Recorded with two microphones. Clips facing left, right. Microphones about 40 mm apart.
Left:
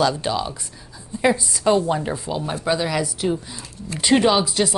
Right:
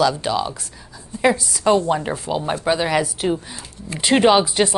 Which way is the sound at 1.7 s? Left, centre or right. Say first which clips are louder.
Right 2 dB; right.